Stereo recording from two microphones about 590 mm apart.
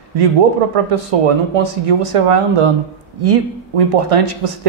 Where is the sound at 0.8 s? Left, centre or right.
Right.